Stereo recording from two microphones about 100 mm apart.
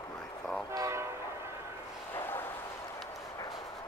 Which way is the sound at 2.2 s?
20° left (ahead or behind).